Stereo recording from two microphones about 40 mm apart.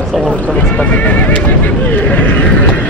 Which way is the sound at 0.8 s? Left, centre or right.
Left.